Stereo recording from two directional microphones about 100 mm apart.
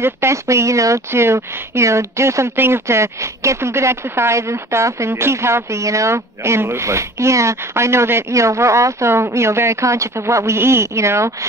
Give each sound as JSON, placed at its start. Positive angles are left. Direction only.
{"t": 0.0, "sound": "speech", "side_deg": -25}